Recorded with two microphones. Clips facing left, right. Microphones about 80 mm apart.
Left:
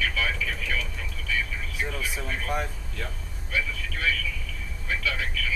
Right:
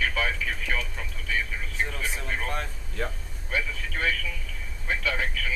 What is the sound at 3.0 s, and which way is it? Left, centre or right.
Speech, right.